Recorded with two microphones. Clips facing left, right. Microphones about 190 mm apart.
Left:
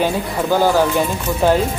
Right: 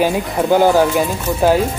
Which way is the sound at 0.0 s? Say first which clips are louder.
Right 2 dB; 15° right (ahead or behind).